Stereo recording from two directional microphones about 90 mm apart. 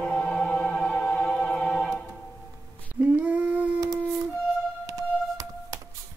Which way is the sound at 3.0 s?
15° right (ahead or behind).